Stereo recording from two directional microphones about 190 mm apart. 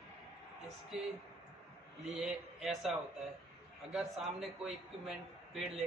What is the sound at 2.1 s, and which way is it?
Speech, centre (ahead or behind).